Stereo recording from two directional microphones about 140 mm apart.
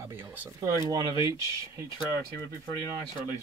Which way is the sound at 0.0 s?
15° right (ahead or behind).